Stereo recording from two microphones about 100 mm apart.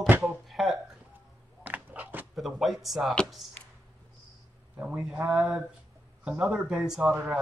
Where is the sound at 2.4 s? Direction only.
Centre (ahead or behind).